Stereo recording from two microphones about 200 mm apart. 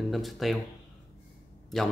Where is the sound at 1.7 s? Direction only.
Centre (ahead or behind).